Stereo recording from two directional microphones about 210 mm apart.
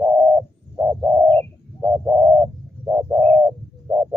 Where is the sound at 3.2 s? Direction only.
10° left (ahead or behind).